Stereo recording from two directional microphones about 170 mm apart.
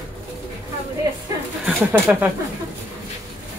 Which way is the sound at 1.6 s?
10° right (ahead or behind).